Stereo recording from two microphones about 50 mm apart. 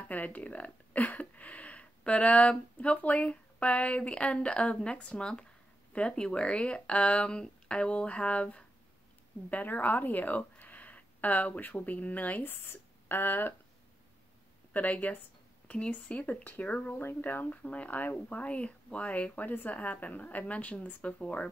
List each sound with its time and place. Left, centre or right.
0.1 s speech: left
12.6 s speech: left
14.7 s speech: left
16.9 s speech: left
17.2 s speech: left